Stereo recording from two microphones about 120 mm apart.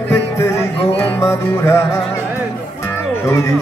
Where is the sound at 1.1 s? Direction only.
20° left (ahead or behind).